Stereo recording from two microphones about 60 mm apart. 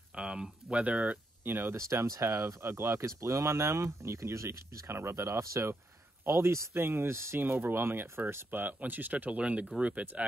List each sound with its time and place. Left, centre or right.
0.1 s speech: centre
1.4 s speech: right
1.8 s speech: right